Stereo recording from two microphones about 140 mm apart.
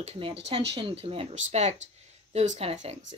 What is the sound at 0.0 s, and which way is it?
Speech, 45° right (ahead or behind).